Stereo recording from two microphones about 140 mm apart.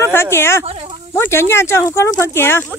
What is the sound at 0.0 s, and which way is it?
Speech, 20° left (ahead or behind).